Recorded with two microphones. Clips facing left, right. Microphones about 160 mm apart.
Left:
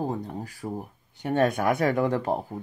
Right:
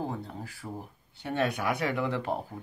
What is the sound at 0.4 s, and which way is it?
Speech, 40° left (ahead or behind).